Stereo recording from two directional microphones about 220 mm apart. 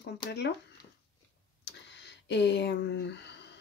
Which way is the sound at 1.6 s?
50° left (ahead or behind).